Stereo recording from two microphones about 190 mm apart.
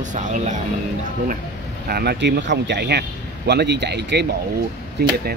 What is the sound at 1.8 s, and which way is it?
A man's voice, 55° right (ahead or behind).